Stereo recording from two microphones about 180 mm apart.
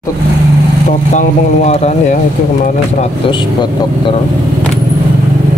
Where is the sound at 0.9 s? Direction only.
40° left (ahead or behind).